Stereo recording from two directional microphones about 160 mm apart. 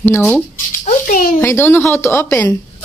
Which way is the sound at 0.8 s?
60° left (ahead or behind).